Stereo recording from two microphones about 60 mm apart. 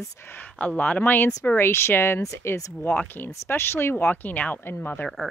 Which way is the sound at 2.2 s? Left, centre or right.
Left.